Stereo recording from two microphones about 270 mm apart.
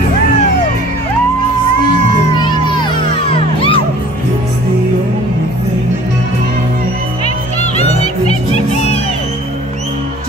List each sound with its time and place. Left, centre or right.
2.3 s music: centre
7.7 s music: left